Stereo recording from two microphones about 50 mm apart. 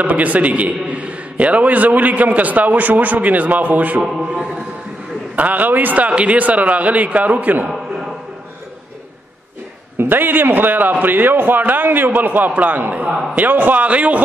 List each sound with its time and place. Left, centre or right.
0.0 s a man's voice: right
4.0 s a man's voice: centre
5.3 s a man's voice: right
9.9 s a man's voice: right
13.8 s a man's voice: right